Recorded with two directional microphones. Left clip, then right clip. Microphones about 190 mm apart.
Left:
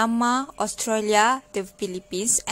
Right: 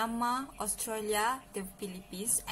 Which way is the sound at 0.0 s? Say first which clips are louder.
Left 10 dB; 55° left (ahead or behind).